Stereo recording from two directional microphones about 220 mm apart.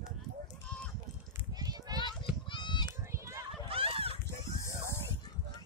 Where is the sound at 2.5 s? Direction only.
20° left (ahead or behind).